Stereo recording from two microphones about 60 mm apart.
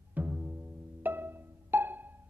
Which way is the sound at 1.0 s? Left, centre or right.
Right.